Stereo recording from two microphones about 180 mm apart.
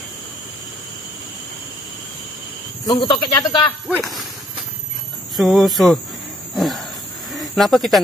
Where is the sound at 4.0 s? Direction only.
Centre (ahead or behind).